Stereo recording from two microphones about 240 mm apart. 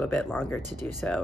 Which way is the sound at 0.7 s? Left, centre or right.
Right.